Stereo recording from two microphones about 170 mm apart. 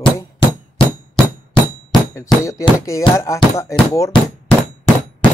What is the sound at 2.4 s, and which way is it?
Speech, 20° left (ahead or behind).